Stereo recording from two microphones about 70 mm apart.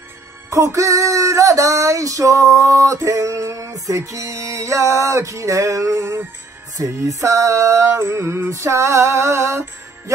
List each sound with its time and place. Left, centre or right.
0.5 s music: right